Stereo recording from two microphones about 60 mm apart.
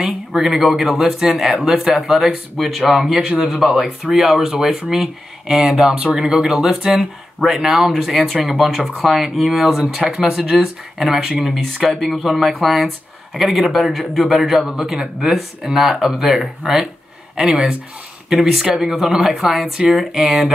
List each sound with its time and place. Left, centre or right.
0.0 s speech: centre
7.4 s speech: centre